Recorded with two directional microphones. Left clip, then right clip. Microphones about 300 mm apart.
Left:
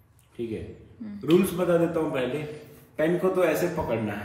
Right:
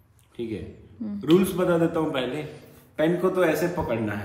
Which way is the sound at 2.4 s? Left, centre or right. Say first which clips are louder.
Left 3 dB; centre.